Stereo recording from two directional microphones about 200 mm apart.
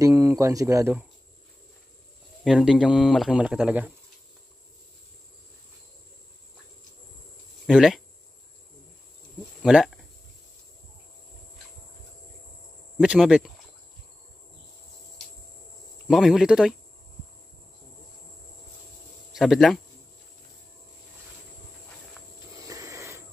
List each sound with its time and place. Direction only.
0.0 s speech: 15° right (ahead or behind)
2.4 s speech: centre (ahead or behind)
7.6 s speech: centre (ahead or behind)
9.6 s speech: 5° right (ahead or behind)
12.9 s speech: centre (ahead or behind)
16.1 s speech: centre (ahead or behind)
19.3 s speech: centre (ahead or behind)
22.6 s a sound: 15° right (ahead or behind)